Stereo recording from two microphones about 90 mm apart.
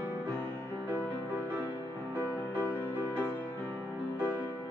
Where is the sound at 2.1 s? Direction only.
25° right (ahead or behind).